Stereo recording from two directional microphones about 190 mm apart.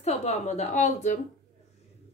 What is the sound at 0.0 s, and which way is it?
Speech, 35° left (ahead or behind).